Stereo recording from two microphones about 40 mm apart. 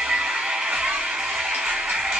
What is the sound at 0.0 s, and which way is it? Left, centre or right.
Music, centre.